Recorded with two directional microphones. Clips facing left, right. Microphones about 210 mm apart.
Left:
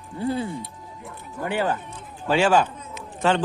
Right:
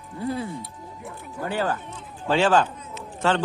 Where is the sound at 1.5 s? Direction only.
20° left (ahead or behind).